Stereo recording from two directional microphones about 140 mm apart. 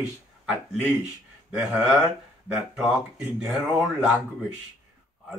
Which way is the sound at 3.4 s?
5° right (ahead or behind).